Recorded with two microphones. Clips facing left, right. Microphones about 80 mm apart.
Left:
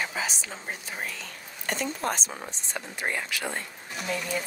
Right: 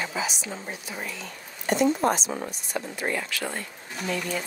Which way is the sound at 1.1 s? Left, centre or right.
Right.